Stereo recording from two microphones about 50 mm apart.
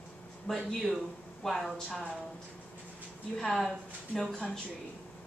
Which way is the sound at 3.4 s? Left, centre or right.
Centre.